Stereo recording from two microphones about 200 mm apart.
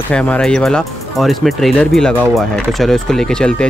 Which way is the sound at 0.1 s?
5° left (ahead or behind).